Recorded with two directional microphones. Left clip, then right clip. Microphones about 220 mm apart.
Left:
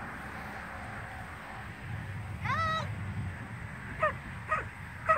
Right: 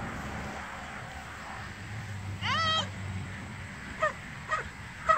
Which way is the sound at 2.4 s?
45° right (ahead or behind).